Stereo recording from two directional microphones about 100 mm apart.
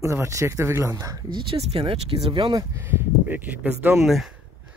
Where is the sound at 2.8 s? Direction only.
20° right (ahead or behind).